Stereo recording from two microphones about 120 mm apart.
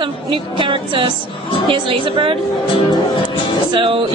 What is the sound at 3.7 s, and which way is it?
Speech, 50° right (ahead or behind).